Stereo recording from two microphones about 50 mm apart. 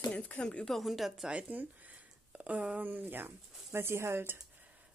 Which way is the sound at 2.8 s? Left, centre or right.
Right.